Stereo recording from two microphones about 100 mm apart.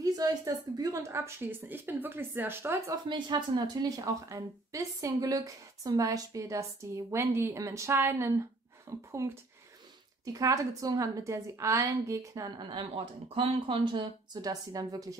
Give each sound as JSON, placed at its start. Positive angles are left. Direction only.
{"t": 0.0, "sound": "a woman's voice", "side_deg": -35}
{"t": 1.0, "sound": "a woman's voice", "side_deg": -25}
{"t": 3.1, "sound": "a woman's voice", "side_deg": -50}